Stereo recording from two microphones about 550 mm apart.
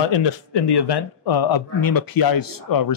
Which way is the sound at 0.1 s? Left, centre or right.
Left.